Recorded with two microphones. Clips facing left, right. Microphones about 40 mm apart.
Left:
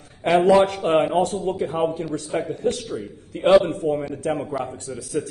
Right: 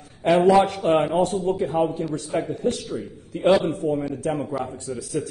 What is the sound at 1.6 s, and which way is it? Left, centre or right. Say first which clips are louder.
A man's voice: right 1 dB; left.